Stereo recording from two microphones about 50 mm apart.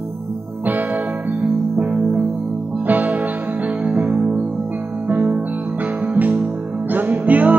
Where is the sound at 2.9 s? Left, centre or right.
Right.